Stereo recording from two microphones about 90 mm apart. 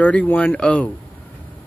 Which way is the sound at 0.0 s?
15° left (ahead or behind).